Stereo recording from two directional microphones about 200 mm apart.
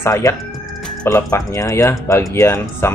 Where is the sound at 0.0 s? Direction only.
15° left (ahead or behind).